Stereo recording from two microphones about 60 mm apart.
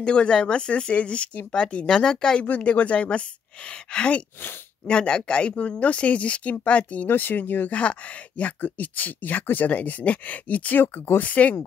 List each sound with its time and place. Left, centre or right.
0.0 s speech: centre
2.4 s speech: left
7.7 s speech: left